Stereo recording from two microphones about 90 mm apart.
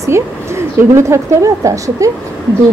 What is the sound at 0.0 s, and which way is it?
Speech, 30° right (ahead or behind).